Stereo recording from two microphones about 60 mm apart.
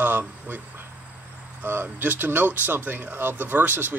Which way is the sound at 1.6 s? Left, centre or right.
Right.